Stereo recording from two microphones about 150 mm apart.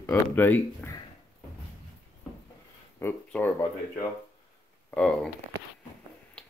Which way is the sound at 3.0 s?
15° left (ahead or behind).